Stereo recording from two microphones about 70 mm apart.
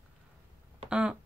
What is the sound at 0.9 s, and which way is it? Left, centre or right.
Speech, centre.